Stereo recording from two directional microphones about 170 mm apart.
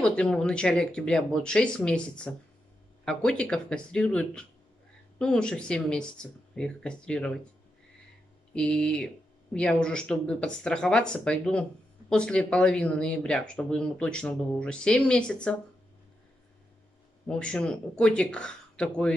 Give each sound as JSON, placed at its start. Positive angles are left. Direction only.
{"t": 0.0, "sound": "speech", "side_deg": 5}
{"t": 8.5, "sound": "speech", "side_deg": 5}
{"t": 17.3, "sound": "speech", "side_deg": 5}